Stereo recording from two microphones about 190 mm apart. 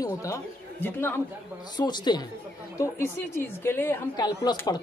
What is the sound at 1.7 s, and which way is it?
A woman's voice, 20° left (ahead or behind).